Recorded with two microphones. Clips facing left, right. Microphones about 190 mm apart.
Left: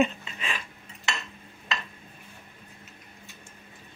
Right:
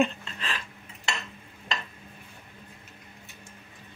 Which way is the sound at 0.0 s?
5° left (ahead or behind).